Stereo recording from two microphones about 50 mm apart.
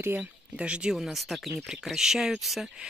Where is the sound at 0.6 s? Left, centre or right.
Right.